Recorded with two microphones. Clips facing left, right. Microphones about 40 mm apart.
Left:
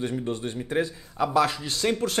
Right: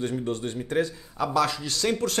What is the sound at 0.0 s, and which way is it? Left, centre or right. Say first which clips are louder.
Speech: even; left.